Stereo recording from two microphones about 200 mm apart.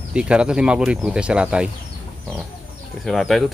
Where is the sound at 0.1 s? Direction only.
5° right (ahead or behind).